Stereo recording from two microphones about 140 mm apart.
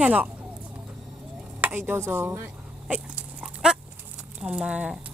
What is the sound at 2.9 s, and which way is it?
Dog, 10° right (ahead or behind).